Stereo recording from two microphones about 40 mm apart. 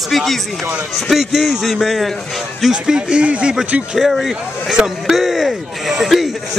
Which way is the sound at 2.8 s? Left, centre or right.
Centre.